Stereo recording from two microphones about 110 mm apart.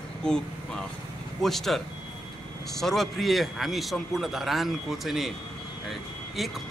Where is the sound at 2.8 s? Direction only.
Centre (ahead or behind).